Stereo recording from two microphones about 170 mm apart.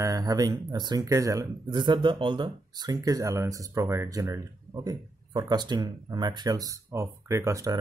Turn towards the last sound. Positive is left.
turn(degrees=-20)  # may be behind; listen again after turning